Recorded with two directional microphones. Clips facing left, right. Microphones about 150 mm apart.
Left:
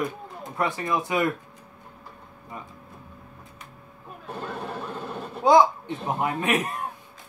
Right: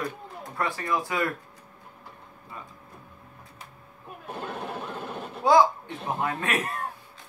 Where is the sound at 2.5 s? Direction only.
20° left (ahead or behind).